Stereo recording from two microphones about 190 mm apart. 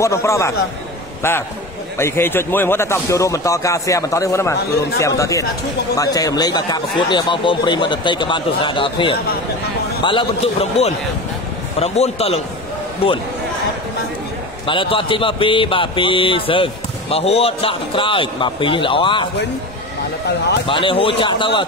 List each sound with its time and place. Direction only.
0.0 s a man's voice: 15° left (ahead or behind)
2.0 s a man's voice: 15° left (ahead or behind); by 13.2 s 30° left (ahead or behind)
14.7 s speech: 25° left (ahead or behind)
20.6 s speech: 25° left (ahead or behind)